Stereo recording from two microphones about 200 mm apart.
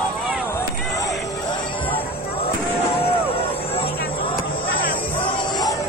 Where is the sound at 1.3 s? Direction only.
20° left (ahead or behind).